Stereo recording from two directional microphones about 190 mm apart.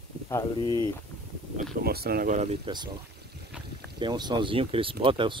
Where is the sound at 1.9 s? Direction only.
55° right (ahead or behind).